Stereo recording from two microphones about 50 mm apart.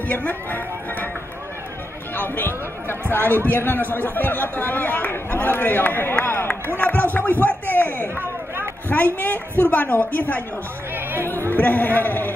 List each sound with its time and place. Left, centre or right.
0.1 s a man's voice: left
2.1 s a man's voice: left
11.5 s a man's voice: left